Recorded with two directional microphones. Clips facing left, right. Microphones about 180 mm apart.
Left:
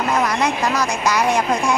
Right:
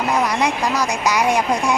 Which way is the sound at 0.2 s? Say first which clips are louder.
Even; 15° right (ahead or behind).